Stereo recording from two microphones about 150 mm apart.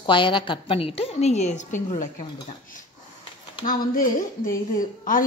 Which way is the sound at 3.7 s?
65° left (ahead or behind).